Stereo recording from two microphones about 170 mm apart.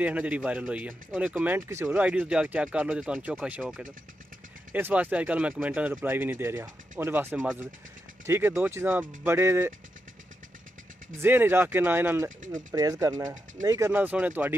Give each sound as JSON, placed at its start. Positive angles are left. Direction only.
{"t": 0.0, "sound": "speech", "side_deg": -10}
{"t": 11.1, "sound": "speech", "side_deg": -10}